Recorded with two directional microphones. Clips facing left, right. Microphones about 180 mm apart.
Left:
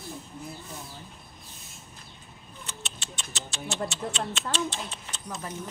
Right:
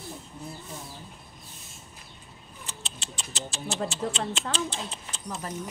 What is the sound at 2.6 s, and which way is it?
Speech, 30° right (ahead or behind).